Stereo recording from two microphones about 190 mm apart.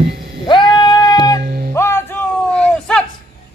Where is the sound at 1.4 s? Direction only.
55° right (ahead or behind).